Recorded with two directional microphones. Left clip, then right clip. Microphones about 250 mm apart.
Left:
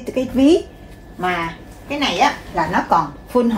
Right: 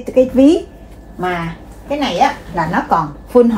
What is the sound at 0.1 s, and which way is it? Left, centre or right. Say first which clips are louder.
Speech: right 5 dB; centre.